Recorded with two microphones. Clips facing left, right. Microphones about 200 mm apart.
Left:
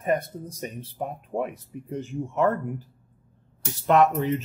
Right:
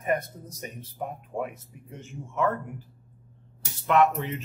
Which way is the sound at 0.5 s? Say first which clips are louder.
Left 5 dB; 30° left (ahead or behind).